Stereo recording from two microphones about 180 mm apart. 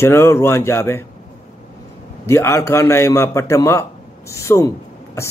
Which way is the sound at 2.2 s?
15° left (ahead or behind).